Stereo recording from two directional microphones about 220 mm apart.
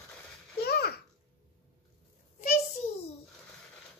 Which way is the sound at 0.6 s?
45° left (ahead or behind).